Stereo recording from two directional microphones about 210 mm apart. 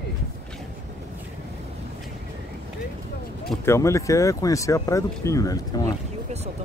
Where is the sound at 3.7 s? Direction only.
15° left (ahead or behind).